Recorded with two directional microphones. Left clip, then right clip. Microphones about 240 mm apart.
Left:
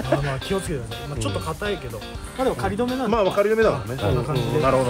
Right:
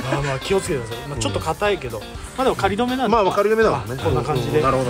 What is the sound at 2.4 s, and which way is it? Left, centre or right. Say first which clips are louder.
Speech: right 4 dB; right.